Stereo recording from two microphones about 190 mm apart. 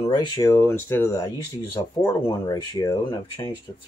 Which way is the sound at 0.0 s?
20° left (ahead or behind).